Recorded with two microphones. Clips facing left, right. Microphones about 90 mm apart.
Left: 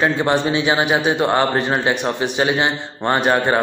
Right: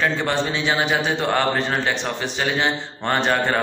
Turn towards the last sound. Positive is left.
turn(degrees=15)  # may be behind; listen again after turning